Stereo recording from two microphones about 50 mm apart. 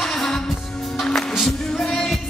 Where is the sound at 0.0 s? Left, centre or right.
Centre.